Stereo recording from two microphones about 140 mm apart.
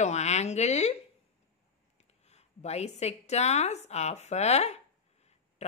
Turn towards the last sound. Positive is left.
turn(degrees=50)  # may be behind; listen again after turning